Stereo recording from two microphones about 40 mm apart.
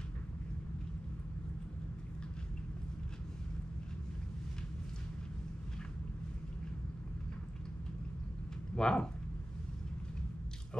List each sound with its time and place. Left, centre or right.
8.7 s speech: centre